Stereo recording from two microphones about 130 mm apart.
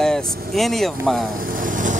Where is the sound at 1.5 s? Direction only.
90° right.